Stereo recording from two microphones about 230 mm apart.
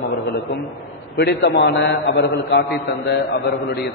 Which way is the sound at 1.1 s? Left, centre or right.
Left.